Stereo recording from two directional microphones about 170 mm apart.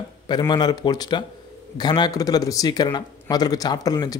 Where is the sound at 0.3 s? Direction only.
25° left (ahead or behind).